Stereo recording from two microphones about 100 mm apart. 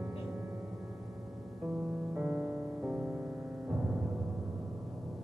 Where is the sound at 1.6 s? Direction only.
15° right (ahead or behind).